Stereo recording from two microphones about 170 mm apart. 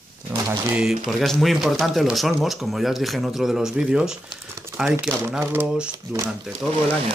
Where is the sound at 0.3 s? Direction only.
15° right (ahead or behind).